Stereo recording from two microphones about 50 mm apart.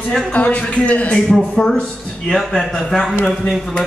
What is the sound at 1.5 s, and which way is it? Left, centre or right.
A man's voice, centre.